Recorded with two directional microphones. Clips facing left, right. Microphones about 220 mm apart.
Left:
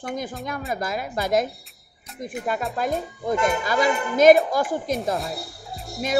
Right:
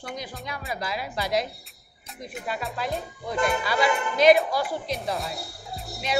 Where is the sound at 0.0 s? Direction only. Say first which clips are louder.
Left 6 dB; 50° left (ahead or behind).